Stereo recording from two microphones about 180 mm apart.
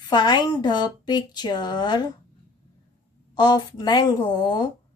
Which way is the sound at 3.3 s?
20° left (ahead or behind).